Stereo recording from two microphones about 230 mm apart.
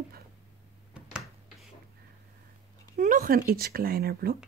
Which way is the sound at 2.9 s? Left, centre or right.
Right.